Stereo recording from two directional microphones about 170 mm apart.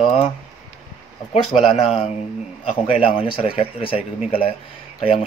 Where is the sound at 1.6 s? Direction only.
35° left (ahead or behind).